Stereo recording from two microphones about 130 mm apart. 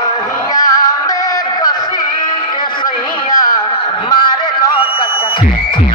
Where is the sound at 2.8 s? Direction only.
30° left (ahead or behind).